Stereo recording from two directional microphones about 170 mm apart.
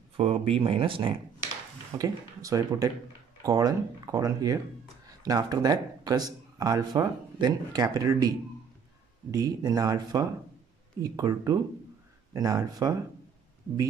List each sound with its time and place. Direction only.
0.2 s speech: 35° right (ahead or behind)
2.0 s speech: 20° right (ahead or behind)